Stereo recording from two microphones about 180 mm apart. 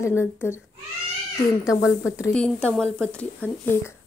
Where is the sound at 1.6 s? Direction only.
15° left (ahead or behind).